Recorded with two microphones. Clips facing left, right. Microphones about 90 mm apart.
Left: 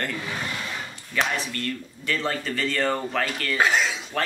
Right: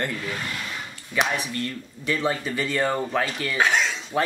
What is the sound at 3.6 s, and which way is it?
Cutlery, centre (ahead or behind).